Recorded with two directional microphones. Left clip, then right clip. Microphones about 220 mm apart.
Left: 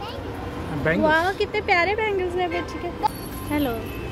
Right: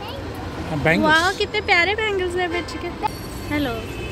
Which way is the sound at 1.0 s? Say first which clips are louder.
Right 1 dB; 5° left (ahead or behind).